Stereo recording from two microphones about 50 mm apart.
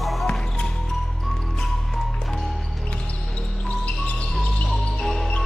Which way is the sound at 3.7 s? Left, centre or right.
Left.